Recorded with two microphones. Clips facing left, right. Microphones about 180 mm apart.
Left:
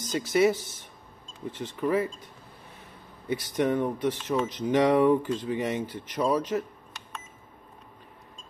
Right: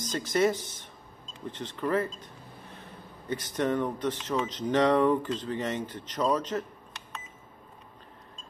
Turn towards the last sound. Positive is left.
turn(degrees=10)  # may be behind; listen again after turning